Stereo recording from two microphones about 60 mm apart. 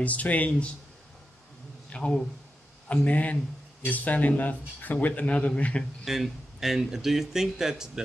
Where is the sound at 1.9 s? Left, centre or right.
Centre.